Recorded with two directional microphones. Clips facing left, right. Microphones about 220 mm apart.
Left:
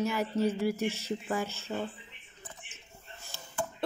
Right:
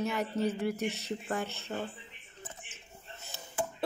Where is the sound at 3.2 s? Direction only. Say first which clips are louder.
Right 1 dB; 20° right (ahead or behind).